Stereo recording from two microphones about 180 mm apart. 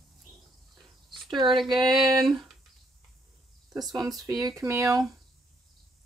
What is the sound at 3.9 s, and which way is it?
Speech, 20° right (ahead or behind).